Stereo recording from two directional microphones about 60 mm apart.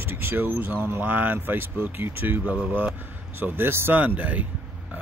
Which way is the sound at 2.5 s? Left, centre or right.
Right.